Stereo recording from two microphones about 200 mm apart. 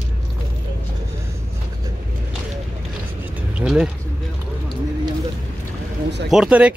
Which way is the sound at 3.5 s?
5° right (ahead or behind).